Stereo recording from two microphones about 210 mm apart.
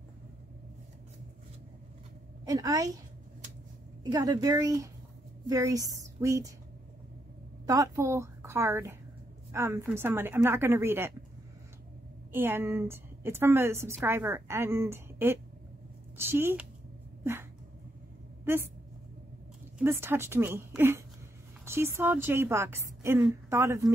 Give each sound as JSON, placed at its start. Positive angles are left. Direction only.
{"t": 2.4, "sound": "a woman's voice", "side_deg": -15}
{"t": 4.0, "sound": "a woman's voice", "side_deg": -20}
{"t": 7.6, "sound": "a woman's voice", "side_deg": -15}
{"t": 12.3, "sound": "a woman's voice", "side_deg": -10}
{"t": 17.2, "sound": "dog", "side_deg": -10}
{"t": 18.4, "sound": "speech", "side_deg": -10}
{"t": 19.8, "sound": "a woman's voice", "side_deg": -10}